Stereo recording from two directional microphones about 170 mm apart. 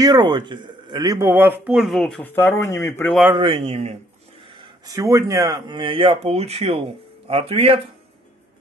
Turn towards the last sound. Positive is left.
turn(degrees=-35)  # may be behind; listen again after turning